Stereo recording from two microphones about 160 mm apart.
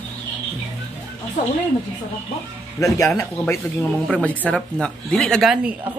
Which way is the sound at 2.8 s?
20° left (ahead or behind).